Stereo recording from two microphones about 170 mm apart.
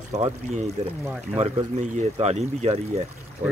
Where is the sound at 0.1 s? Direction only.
40° right (ahead or behind).